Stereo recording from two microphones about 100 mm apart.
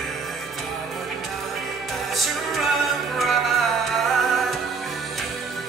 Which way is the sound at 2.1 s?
Centre (ahead or behind).